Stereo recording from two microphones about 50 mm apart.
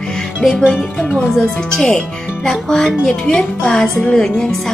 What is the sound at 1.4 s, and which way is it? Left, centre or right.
A woman's voice, centre.